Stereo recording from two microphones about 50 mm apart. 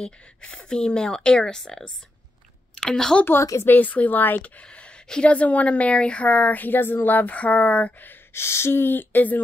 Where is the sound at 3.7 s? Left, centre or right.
Left.